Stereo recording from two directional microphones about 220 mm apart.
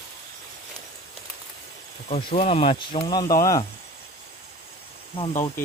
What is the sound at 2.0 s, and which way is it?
Speech, 30° left (ahead or behind).